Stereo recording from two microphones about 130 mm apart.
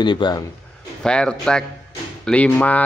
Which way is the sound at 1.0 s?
5° left (ahead or behind).